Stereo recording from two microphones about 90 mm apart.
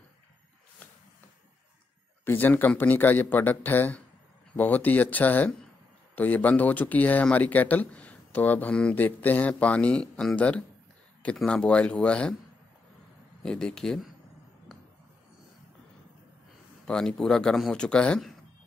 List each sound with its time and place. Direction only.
2.2 s speech: 20° left (ahead or behind)
13.4 s speech: 10° left (ahead or behind)
16.8 s speech: 5° left (ahead or behind)